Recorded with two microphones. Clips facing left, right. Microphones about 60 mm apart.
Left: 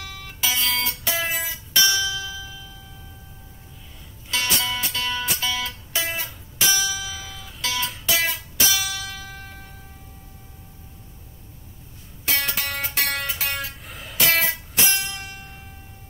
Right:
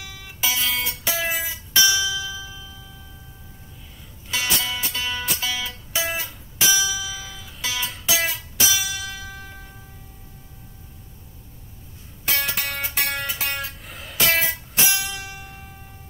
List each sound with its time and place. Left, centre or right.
0.0 s music: centre
4.3 s music: centre
12.3 s music: centre